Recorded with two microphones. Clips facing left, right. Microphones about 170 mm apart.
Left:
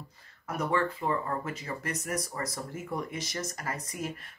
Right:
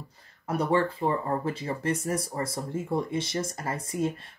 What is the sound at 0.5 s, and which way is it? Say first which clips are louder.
Speech: right 4 dB; 30° right (ahead or behind).